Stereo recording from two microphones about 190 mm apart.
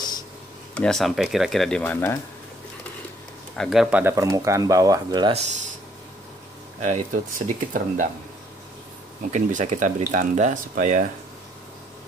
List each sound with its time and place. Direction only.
0.7 s speech: 5° left (ahead or behind)
3.5 s speech: centre (ahead or behind); by 5.3 s 20° right (ahead or behind)
5.3 s speech: 35° right (ahead or behind)
6.8 s speech: 40° right (ahead or behind)
9.2 s speech: 40° right (ahead or behind)